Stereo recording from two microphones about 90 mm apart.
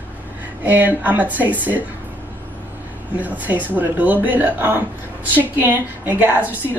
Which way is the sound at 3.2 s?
20° right (ahead or behind).